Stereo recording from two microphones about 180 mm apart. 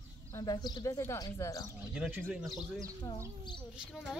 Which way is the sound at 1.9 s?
5° right (ahead or behind).